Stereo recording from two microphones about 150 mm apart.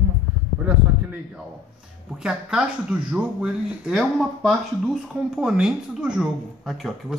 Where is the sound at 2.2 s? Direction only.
5° right (ahead or behind).